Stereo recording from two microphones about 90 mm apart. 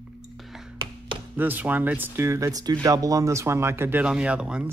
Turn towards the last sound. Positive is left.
turn(degrees=-10)  # may be behind; listen again after turning